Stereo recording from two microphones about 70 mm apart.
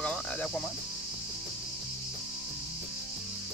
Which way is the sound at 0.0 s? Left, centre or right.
Centre.